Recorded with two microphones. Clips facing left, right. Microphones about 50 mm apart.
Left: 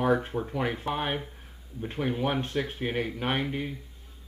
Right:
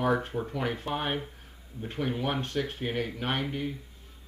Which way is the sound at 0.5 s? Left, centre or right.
Centre.